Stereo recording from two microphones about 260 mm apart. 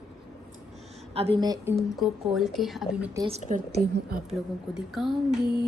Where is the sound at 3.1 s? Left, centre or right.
Centre.